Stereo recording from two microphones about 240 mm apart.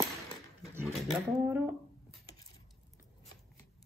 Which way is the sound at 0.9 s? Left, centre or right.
Centre.